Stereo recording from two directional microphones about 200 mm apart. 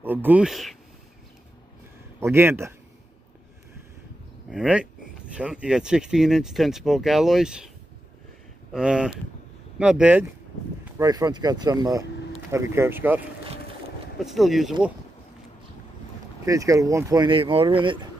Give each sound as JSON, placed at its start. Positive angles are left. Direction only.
{"t": 0.0, "sound": "speech", "side_deg": -10}
{"t": 2.1, "sound": "speech", "side_deg": -10}
{"t": 4.5, "sound": "speech", "side_deg": -5}
{"t": 8.7, "sound": "speech", "side_deg": -5}
{"t": 11.0, "sound": "speech", "side_deg": -15}
{"t": 14.2, "sound": "speech", "side_deg": 0}
{"t": 16.4, "sound": "speech", "side_deg": -15}